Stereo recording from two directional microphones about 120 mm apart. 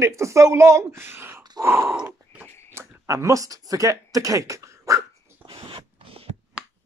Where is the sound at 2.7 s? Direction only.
25° right (ahead or behind).